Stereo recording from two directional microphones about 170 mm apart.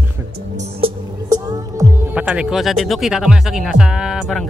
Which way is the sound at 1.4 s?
20° right (ahead or behind).